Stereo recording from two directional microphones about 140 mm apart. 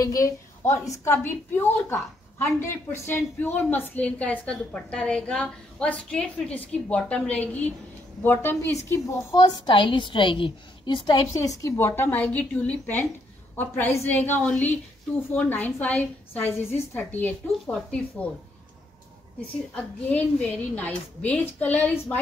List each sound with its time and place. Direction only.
0.0 s a woman's voice: 25° left (ahead or behind)
9.7 s a woman's voice: 35° left (ahead or behind)
11.3 s a woman's voice: 25° left (ahead or behind)
19.7 s a woman's voice: 10° left (ahead or behind)